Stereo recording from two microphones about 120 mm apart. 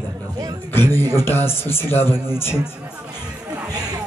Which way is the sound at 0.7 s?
20° left (ahead or behind).